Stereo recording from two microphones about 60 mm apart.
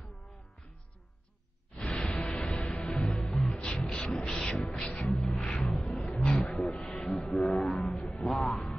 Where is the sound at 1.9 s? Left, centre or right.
Centre.